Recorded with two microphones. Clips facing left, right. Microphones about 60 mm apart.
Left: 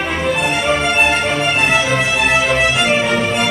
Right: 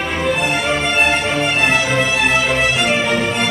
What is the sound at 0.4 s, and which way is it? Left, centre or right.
Music, centre.